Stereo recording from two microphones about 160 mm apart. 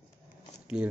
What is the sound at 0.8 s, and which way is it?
Speech, 5° right (ahead or behind).